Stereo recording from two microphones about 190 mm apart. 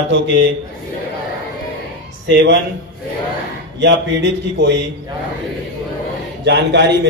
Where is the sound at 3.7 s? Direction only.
65° right (ahead or behind).